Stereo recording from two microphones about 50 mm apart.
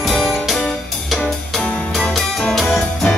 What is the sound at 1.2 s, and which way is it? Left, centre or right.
Music, centre.